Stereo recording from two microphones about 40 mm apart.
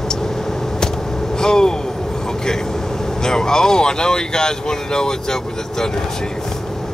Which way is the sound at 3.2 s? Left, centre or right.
Centre.